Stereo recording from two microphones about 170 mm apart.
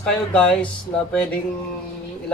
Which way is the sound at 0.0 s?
5° left (ahead or behind).